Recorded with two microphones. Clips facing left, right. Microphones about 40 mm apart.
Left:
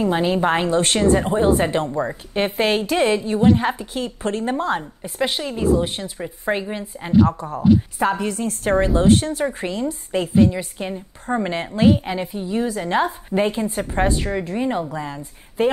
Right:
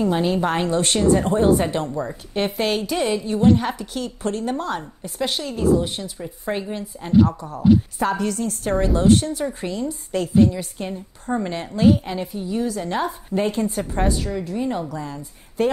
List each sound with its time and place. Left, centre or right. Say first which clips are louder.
0.0 s a woman's voice: left 1 dB; centre
0.7 s a woman's voice: left 1 dB; left
1.2 s a woman's voice: even; centre
1.5 s a woman's voice: left 1 dB; left
6.5 s a woman's voice: left 2 dB; centre
7.2 s a woman's voice: left 3 dB; left
8.0 s a woman's voice: left 1 dB; centre
9.0 s a woman's voice: left 1 dB; left
10.1 s a woman's voice: even; left